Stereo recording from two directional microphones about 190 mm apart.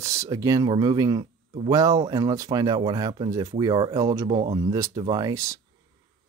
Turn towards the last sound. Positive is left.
turn(degrees=-15)  # may be behind; listen again after turning